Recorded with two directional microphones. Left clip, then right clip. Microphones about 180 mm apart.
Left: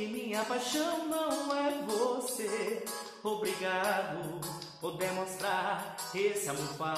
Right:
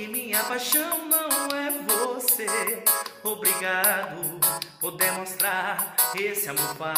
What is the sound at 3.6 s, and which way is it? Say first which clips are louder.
Music: right 8 dB; 10° right (ahead or behind).